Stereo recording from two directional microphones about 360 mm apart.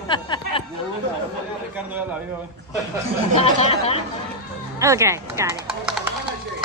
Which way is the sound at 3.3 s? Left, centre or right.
Centre.